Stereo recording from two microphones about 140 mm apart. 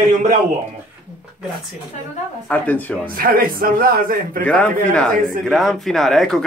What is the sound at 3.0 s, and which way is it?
A man's voice, 90° right.